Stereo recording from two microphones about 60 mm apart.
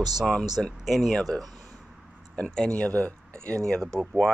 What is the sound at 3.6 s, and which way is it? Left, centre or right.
Speech, centre.